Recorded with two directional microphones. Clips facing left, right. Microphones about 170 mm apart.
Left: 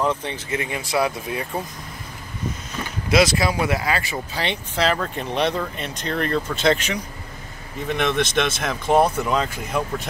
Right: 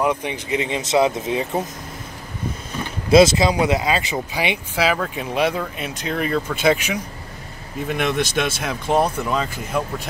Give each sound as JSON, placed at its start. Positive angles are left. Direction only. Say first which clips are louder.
{"t": 0.0, "sound": "speech", "louder": "right 2 dB", "side_deg": -15}
{"t": 3.1, "sound": "speech", "louder": "right 5 dB", "side_deg": -25}